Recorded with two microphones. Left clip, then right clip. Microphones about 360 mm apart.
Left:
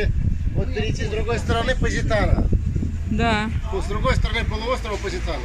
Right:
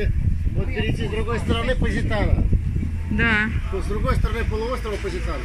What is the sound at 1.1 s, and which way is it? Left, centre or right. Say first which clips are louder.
Speech: left 3 dB; left.